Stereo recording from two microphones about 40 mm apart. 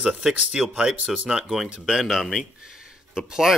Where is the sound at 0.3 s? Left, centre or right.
Centre.